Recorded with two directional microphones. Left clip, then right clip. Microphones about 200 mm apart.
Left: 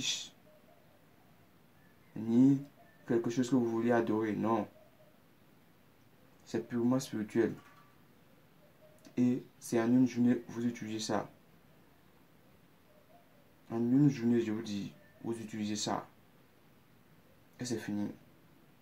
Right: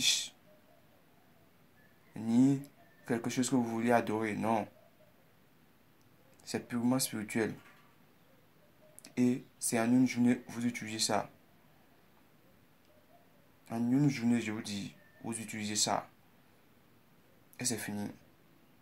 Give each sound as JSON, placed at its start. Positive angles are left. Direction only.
{"t": 2.2, "sound": "speech", "side_deg": -20}
{"t": 6.4, "sound": "speech", "side_deg": -20}
{"t": 9.1, "sound": "speech", "side_deg": -20}
{"t": 13.7, "sound": "speech", "side_deg": -20}
{"t": 17.6, "sound": "speech", "side_deg": -20}